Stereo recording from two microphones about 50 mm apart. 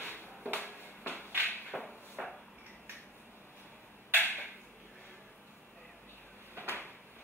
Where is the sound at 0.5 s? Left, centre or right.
Left.